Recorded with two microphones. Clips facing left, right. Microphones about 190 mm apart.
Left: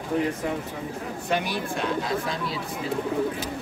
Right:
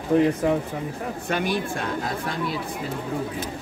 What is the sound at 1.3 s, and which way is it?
Speech, 50° right (ahead or behind).